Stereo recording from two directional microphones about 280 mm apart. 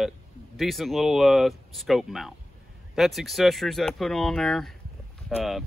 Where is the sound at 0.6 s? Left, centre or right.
Centre.